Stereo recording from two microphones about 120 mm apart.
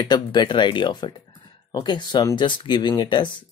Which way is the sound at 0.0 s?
35° left (ahead or behind).